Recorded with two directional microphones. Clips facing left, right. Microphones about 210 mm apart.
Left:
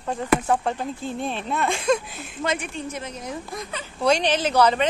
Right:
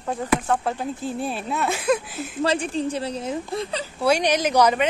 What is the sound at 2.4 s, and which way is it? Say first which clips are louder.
A woman's voice: right 5 dB; 35° right (ahead or behind).